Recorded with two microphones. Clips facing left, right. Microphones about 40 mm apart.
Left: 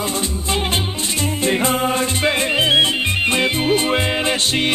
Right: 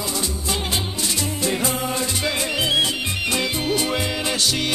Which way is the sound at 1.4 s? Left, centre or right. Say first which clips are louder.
Left 7 dB; left.